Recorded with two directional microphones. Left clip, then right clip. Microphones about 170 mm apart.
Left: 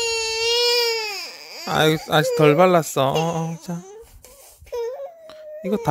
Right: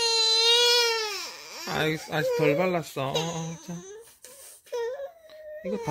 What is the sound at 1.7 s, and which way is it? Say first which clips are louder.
Speech: left 10 dB; 45° left (ahead or behind).